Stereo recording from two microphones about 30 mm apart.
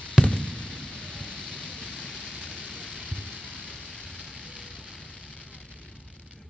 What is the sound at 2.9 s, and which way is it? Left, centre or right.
Rain, left.